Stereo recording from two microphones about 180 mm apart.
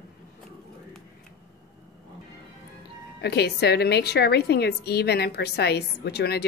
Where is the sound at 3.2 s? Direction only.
65° left (ahead or behind).